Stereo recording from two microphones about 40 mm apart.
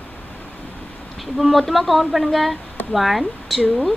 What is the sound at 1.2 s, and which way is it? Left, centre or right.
A woman's voice, centre.